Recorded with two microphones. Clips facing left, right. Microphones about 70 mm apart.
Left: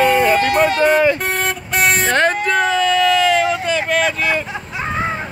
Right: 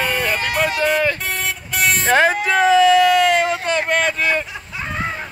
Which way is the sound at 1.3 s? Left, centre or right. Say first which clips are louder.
Left 4 dB; left.